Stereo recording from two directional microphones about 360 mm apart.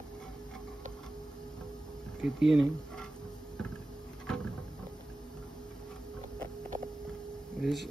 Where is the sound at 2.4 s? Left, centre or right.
Right.